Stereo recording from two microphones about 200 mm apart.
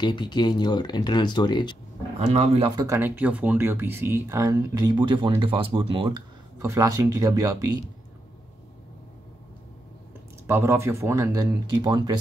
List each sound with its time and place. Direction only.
0.0 s speech: 20° left (ahead or behind)
2.1 s a man's voice: 35° right (ahead or behind)
2.8 s speech: 15° right (ahead or behind)
6.6 s speech: 15° right (ahead or behind)
10.4 s speech: 15° right (ahead or behind)